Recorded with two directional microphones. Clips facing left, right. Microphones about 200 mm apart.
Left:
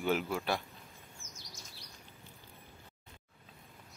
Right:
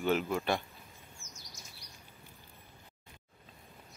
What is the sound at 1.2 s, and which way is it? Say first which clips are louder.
Chirp: left 1 dB; 90° left.